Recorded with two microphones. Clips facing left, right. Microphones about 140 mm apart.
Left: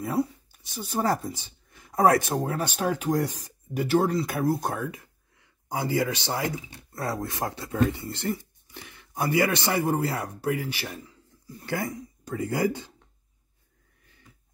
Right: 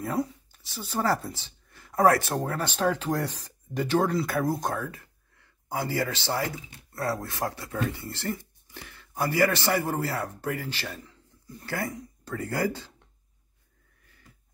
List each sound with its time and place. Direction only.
0.0 s speech: 10° left (ahead or behind)
4.6 s a man's voice: 15° left (ahead or behind)